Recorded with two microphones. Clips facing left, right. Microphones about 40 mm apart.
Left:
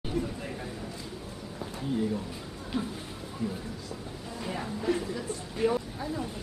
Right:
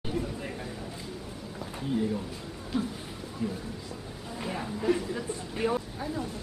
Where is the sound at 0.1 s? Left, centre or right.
Centre.